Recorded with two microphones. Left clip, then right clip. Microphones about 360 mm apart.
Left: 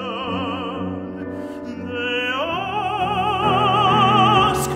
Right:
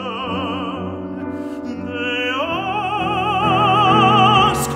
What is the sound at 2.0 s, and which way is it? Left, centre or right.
Music, centre.